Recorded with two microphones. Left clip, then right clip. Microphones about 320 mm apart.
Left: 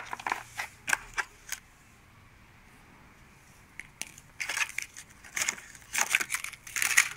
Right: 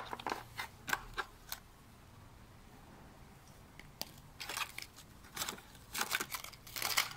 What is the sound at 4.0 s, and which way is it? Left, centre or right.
Crushing, centre.